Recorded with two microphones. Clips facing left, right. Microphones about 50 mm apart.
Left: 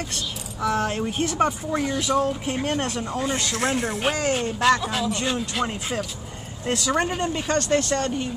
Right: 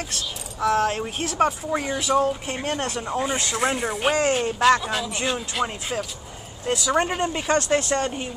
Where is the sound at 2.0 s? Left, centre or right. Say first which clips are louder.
Right 1 dB; centre.